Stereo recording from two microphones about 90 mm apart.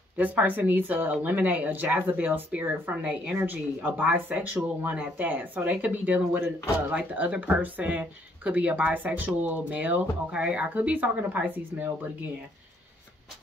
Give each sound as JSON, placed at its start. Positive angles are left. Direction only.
{"t": 0.2, "sound": "speech", "side_deg": -20}